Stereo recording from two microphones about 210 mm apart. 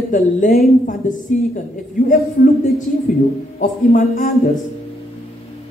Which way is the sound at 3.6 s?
40° left (ahead or behind).